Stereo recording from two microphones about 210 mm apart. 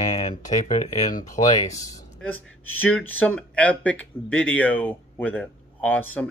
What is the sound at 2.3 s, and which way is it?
Speech, 90° left.